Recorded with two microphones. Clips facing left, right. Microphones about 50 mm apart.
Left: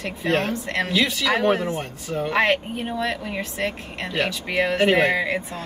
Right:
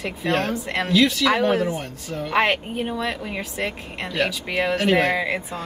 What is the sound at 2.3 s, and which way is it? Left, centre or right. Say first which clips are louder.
Speech: right 1 dB; centre.